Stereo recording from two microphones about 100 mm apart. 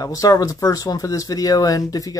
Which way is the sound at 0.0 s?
35° left (ahead or behind).